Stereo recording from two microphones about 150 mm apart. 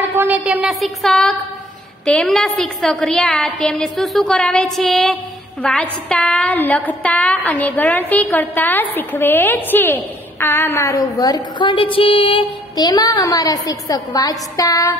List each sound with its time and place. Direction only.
0.0 s a woman's voice: 15° right (ahead or behind); by 15.0 s 20° left (ahead or behind)